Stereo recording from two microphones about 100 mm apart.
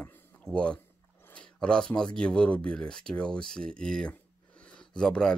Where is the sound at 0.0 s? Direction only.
10° left (ahead or behind).